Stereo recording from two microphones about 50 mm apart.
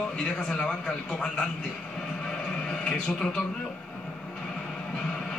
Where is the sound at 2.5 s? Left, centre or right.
Centre.